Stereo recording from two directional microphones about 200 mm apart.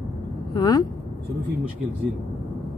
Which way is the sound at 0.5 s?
20° left (ahead or behind).